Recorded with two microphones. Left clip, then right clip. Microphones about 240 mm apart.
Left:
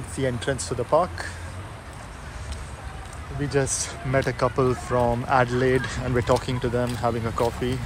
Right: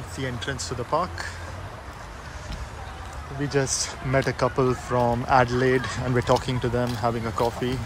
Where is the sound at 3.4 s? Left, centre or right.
Centre.